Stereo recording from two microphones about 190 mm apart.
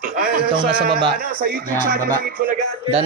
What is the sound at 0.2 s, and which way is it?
Speech, 50° right (ahead or behind).